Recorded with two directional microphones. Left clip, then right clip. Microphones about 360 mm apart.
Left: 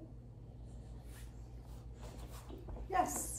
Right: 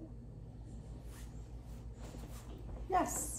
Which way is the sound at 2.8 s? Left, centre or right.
Centre.